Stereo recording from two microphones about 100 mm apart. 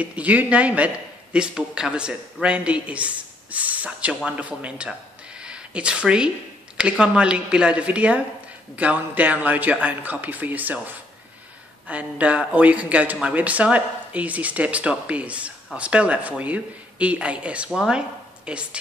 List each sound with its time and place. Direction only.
0.0 s speech: 15° right (ahead or behind)